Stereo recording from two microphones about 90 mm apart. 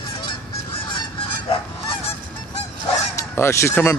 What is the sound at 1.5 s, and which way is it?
Goose, 90° left.